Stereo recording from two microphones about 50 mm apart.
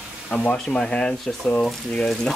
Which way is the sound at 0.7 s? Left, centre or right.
Centre.